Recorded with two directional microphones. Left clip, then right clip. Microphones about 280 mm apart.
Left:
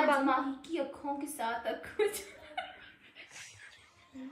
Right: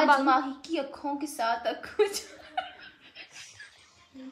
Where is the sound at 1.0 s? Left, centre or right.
Right.